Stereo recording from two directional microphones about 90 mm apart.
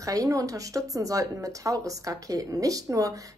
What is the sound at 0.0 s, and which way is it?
Speech, 40° right (ahead or behind).